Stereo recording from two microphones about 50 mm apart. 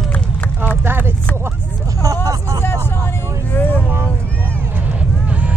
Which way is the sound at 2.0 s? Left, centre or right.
Right.